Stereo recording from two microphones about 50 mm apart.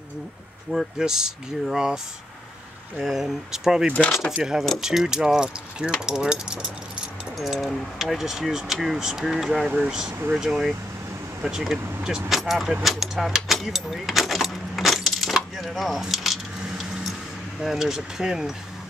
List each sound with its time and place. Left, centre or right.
0.7 s speech: centre
3.0 s speech: centre
7.3 s speech: centre
12.8 s keys jangling: centre
17.6 s speech: centre